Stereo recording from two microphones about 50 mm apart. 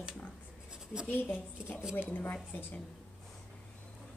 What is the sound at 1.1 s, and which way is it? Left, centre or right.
A woman's voice, left.